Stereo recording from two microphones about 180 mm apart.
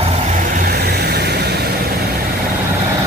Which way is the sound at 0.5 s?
55° right (ahead or behind).